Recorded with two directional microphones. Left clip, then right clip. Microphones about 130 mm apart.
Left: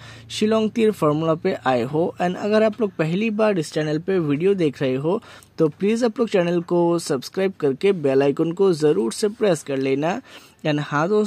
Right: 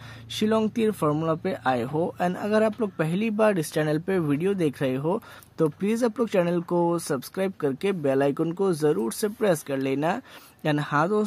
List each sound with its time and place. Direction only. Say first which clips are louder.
0.3 s speech: left 4 dB; 30° left (ahead or behind)